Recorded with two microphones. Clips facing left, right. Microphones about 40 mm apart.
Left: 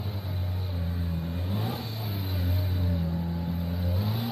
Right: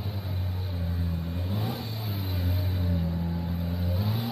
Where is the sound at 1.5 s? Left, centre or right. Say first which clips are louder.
Even; centre.